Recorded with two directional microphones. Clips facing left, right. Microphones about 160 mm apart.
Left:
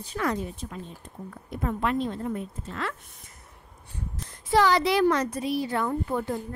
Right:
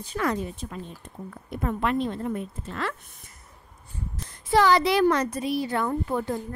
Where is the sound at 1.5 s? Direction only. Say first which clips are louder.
Right 1 dB; 65° right (ahead or behind).